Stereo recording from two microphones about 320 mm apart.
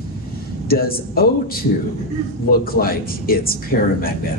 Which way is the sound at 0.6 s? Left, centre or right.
Left.